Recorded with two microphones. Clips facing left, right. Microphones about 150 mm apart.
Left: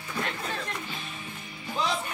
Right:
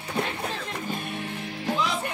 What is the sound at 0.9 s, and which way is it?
Music, 60° right (ahead or behind).